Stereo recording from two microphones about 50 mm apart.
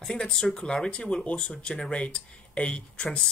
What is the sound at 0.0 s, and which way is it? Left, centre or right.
Speech, centre.